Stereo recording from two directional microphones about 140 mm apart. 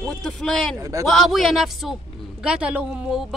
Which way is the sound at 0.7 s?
20° right (ahead or behind).